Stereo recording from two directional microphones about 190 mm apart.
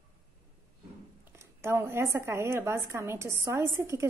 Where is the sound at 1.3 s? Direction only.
15° right (ahead or behind).